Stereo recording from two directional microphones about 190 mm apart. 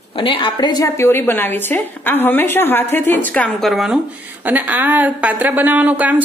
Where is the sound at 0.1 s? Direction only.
25° left (ahead or behind).